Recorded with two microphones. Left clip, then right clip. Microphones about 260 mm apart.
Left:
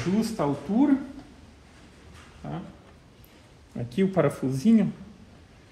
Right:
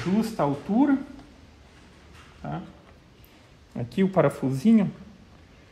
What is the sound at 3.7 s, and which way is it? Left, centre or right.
Speech, right.